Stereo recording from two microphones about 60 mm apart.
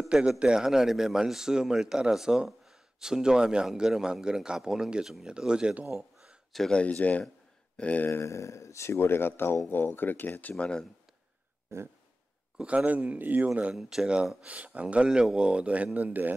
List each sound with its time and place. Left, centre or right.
0.1 s a man's voice: centre
5.9 s a sound: centre
6.7 s speech: left
8.1 s speech: left
10.6 s speech: centre
11.7 s a sound: right
12.6 s speech: right
13.7 s a man's voice: centre
14.3 s speech: right